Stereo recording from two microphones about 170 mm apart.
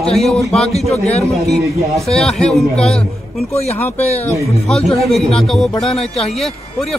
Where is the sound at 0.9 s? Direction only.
40° left (ahead or behind).